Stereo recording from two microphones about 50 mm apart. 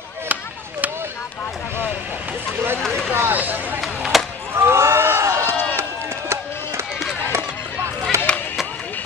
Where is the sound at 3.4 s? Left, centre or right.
Right.